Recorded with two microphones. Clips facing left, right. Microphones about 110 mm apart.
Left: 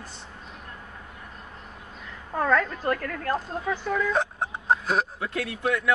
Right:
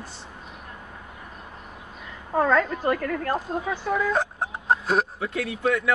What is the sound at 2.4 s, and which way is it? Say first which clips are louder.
Speech: right 3 dB; 15° right (ahead or behind).